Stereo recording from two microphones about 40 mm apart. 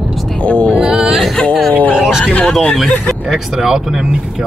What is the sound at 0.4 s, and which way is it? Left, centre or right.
Music, left.